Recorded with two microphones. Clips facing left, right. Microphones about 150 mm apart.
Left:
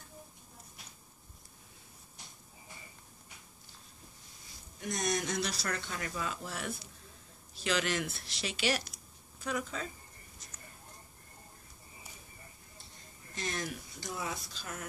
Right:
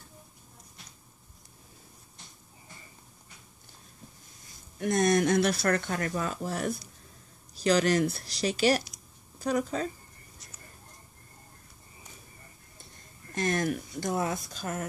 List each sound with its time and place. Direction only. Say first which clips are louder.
4.7 s speech: right 10 dB; 55° right (ahead or behind)
13.3 s speech: right 10 dB; 55° right (ahead or behind)